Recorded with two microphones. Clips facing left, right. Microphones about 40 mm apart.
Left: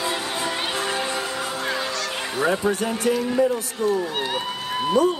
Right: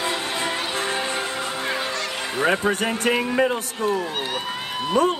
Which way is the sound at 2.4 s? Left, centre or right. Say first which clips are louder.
Right 1 dB; right.